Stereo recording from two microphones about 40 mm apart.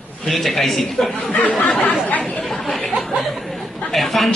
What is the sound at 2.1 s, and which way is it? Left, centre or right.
Chatter, left.